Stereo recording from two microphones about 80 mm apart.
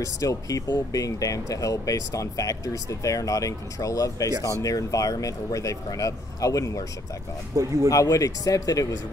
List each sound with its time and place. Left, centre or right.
0.0 s speech: left
7.5 s speech: right
7.9 s speech: left